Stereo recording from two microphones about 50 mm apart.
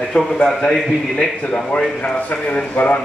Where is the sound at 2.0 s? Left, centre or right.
Left.